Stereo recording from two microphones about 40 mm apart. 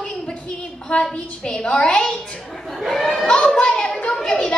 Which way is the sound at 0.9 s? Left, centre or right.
Left.